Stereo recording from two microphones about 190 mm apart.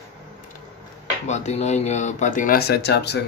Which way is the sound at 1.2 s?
35° left (ahead or behind).